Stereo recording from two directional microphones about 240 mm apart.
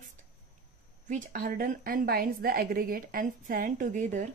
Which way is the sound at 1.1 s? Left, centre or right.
Right.